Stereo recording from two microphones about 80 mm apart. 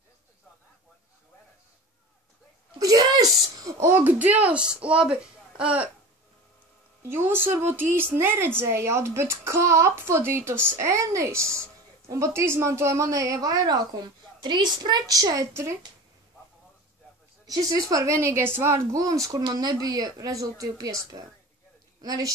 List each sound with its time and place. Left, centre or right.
2.8 s a sound: right
3.9 s speech: centre
7.0 s a woman's voice: right
17.5 s a woman's voice: right
19.4 s a woman's voice: right